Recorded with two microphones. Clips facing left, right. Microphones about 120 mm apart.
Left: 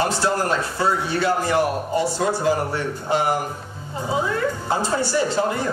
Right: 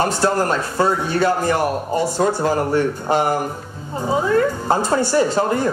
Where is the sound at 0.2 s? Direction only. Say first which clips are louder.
Right 3 dB; 45° right (ahead or behind).